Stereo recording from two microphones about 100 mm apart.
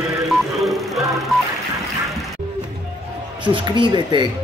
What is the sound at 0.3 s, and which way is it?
Music, centre (ahead or behind).